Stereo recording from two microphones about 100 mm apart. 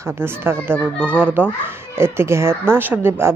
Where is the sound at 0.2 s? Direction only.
25° right (ahead or behind).